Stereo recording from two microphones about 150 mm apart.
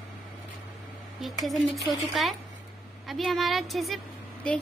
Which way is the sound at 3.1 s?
Centre (ahead or behind).